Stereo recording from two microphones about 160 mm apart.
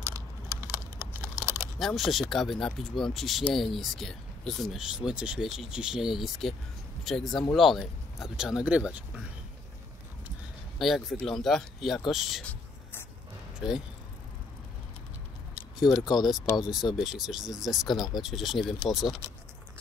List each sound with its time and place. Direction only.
0.0 s a sound: 15° right (ahead or behind)
1.8 s speech: centre (ahead or behind)
10.8 s speech: centre (ahead or behind)
13.6 s speech: 5° right (ahead or behind)
16.1 s speech: centre (ahead or behind)